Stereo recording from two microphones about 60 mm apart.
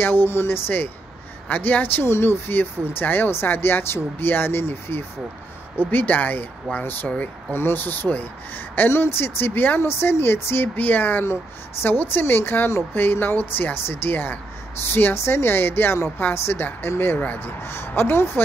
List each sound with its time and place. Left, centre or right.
0.0 s speech: left
7.1 s speech: centre
7.5 s speech: left
9.8 s speech: left